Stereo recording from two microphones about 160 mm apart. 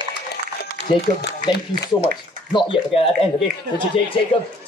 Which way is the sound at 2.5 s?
30° left (ahead or behind).